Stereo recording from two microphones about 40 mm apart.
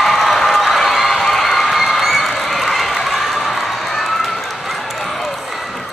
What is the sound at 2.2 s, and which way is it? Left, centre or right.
Run, centre.